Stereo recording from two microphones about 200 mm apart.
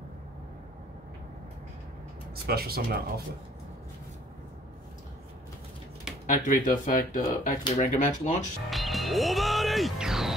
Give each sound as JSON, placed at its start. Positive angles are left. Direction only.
{"t": 2.4, "sound": "speech", "side_deg": -50}
{"t": 6.2, "sound": "speech", "side_deg": 40}
{"t": 8.6, "sound": "speech", "side_deg": 0}